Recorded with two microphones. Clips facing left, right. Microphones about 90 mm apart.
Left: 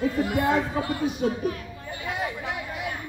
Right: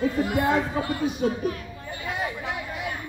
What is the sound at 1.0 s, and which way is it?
Chatter, centre (ahead or behind).